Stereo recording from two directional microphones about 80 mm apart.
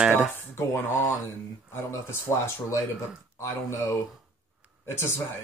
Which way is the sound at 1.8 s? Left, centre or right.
Left.